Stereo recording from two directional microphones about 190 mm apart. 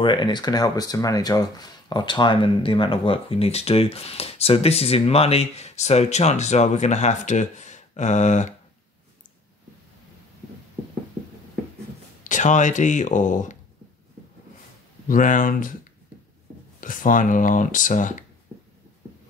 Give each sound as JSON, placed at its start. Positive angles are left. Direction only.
{"t": 0.0, "sound": "speech", "side_deg": 25}
{"t": 12.2, "sound": "speech", "side_deg": 40}
{"t": 15.0, "sound": "speech", "side_deg": 45}